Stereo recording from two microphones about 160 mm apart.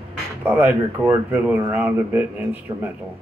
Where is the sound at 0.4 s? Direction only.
10° right (ahead or behind).